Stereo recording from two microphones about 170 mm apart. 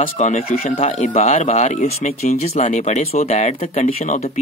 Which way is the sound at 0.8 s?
40° left (ahead or behind).